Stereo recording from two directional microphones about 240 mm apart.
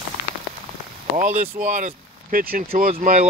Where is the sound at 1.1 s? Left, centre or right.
Right.